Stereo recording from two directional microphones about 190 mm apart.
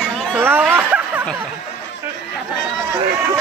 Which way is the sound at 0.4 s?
10° right (ahead or behind).